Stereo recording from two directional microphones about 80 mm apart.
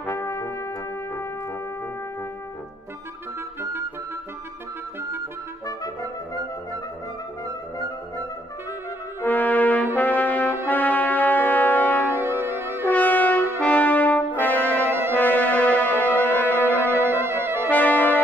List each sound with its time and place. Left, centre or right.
0.1 s brass instrument: left
9.2 s brass instrument: left
12.1 s music: right
12.9 s brass instrument: left
14.9 s music: right
15.1 s music: left
17.0 s music: right
17.6 s brass instrument: left